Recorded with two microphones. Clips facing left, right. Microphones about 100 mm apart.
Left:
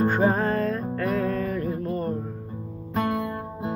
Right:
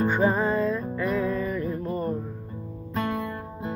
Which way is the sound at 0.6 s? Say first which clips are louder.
Even; 55° left (ahead or behind).